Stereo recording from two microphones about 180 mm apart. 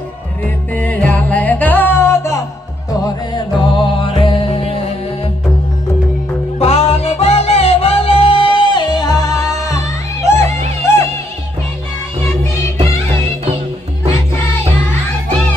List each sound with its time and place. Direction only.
0.7 s music: 10° left (ahead or behind)
3.3 s music: 25° left (ahead or behind)
6.6 s music: 35° left (ahead or behind); by 10.5 s 15° left (ahead or behind)